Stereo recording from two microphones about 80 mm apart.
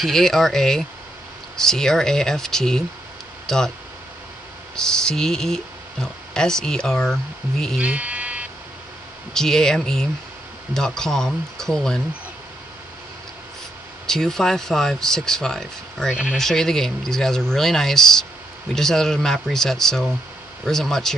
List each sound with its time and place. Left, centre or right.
0.0 s speech: centre
4.7 s speech: centre
7.8 s electric shaver: centre
9.3 s speech: centre
14.0 s speech: centre
16.1 s speech: centre
16.3 s speech: centre